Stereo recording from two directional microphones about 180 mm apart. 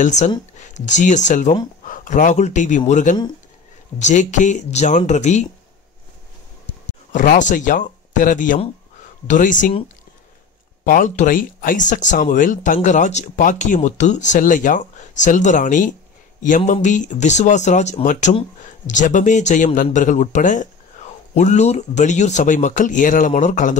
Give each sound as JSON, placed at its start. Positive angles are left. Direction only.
{"t": 0.0, "sound": "speech", "side_deg": 40}
{"t": 7.1, "sound": "speech", "side_deg": 45}
{"t": 10.8, "sound": "speech", "side_deg": 50}